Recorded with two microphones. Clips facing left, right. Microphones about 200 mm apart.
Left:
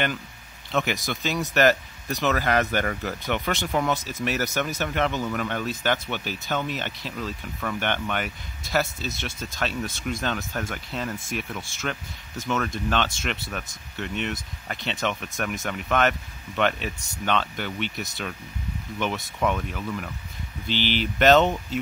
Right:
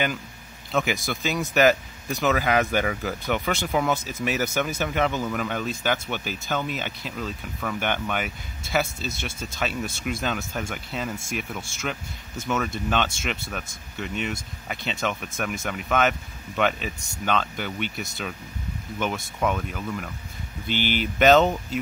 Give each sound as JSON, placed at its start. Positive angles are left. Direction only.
{"t": 0.7, "sound": "a man's voice", "side_deg": 0}
{"t": 20.6, "sound": "speech", "side_deg": -50}
{"t": 21.2, "sound": "speech", "side_deg": -5}